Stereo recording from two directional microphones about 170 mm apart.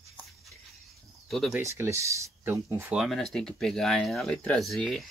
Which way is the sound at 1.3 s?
Centre (ahead or behind).